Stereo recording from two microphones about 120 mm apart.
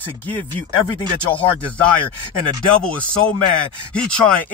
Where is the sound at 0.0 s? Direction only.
15° left (ahead or behind).